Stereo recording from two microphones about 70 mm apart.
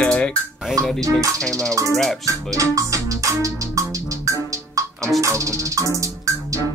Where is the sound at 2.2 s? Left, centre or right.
Right.